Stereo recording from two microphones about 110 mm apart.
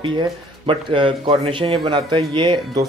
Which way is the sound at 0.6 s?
50° right (ahead or behind).